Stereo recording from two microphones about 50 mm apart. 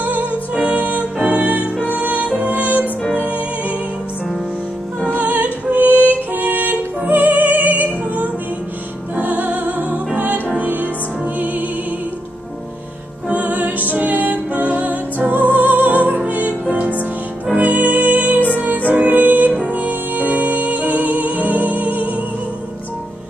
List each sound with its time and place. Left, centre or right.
0.0 s music: right
5.0 s music: right
13.3 s music: right